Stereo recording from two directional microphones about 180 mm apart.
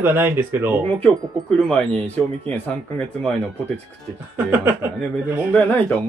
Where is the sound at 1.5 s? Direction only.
Centre (ahead or behind).